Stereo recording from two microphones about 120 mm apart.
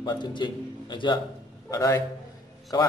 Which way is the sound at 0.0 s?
35° left (ahead or behind).